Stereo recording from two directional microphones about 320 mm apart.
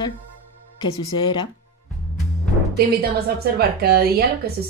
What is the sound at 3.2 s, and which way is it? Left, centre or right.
A woman's voice, right.